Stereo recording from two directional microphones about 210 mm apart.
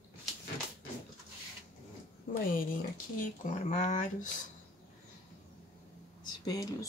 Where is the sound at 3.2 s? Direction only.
35° left (ahead or behind).